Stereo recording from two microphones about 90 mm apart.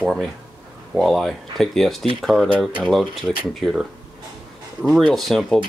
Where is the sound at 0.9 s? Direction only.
Centre (ahead or behind).